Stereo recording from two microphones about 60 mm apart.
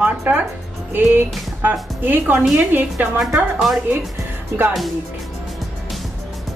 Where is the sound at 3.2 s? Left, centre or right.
Centre.